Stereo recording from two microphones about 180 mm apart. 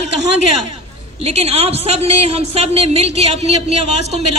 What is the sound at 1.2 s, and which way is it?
A woman's voice, 35° right (ahead or behind).